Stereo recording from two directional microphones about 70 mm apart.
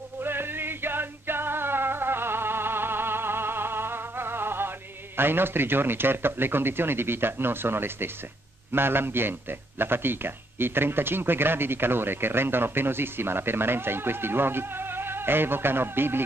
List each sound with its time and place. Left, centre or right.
0.2 s music: right
8.7 s a man's voice: right